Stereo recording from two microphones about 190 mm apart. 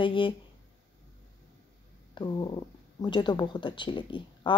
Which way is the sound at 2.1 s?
25° left (ahead or behind).